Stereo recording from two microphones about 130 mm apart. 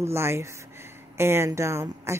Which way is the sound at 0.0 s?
20° right (ahead or behind).